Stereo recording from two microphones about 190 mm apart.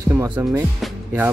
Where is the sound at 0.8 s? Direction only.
10° right (ahead or behind).